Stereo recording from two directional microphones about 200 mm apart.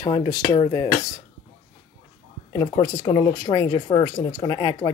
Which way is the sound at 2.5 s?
15° left (ahead or behind).